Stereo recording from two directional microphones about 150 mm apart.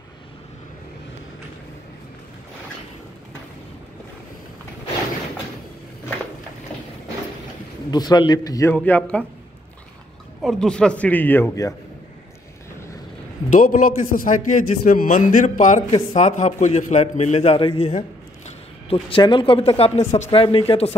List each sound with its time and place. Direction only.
7.9 s a man's voice: 30° left (ahead or behind)
8.7 s a man's voice: 10° left (ahead or behind)
10.4 s a man's voice: 5° left (ahead or behind)
13.5 s a man's voice: 65° left (ahead or behind)
15.9 s a man's voice: 45° left (ahead or behind)